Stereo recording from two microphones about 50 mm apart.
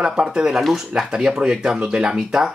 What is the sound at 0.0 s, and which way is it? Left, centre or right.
Speech, centre.